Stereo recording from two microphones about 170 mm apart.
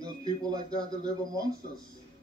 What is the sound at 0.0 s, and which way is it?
Speech, 20° right (ahead or behind).